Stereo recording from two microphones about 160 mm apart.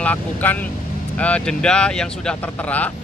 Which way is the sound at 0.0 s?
10° left (ahead or behind).